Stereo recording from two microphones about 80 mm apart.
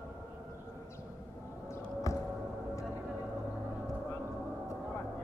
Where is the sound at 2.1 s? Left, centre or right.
Left.